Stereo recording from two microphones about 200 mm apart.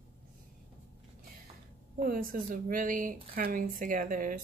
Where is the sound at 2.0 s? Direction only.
45° right (ahead or behind).